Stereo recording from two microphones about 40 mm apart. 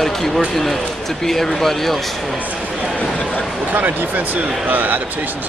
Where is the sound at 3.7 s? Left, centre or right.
Right.